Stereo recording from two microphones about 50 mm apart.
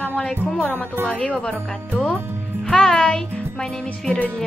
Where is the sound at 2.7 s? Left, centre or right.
Centre.